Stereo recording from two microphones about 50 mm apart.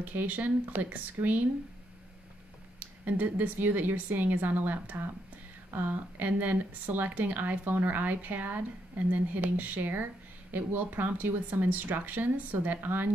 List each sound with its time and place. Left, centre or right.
0.0 s speech: right
2.8 s speech: right